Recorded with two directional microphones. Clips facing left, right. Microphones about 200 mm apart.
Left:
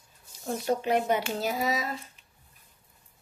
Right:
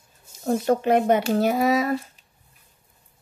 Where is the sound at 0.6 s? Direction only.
55° right (ahead or behind).